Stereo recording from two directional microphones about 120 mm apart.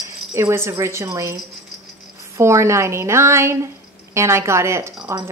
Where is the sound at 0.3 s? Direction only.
25° right (ahead or behind).